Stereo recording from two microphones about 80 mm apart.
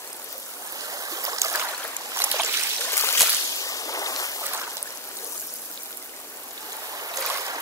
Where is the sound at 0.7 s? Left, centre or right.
Right.